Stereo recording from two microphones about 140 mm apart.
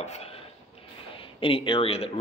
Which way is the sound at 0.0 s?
50° left (ahead or behind).